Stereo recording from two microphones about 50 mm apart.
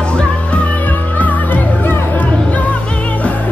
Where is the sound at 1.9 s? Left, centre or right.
Left.